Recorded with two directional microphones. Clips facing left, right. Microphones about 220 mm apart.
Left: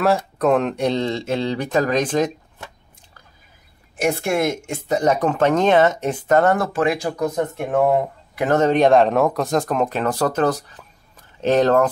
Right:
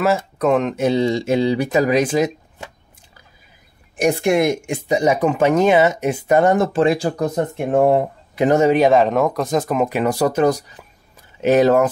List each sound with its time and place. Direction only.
0.0 s speech: centre (ahead or behind)
3.9 s speech: 15° right (ahead or behind)
8.5 s speech: 10° right (ahead or behind)